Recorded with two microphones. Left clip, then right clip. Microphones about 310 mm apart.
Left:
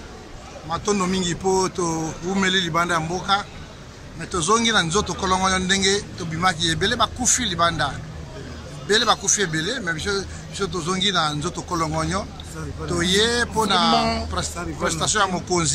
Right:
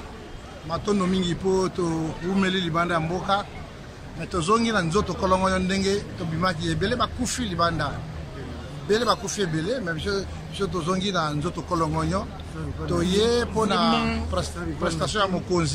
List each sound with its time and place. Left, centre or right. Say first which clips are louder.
0.7 s speech: left 3 dB; centre
13.9 s speech: left 5 dB; centre
14.3 s speech: left 1 dB; centre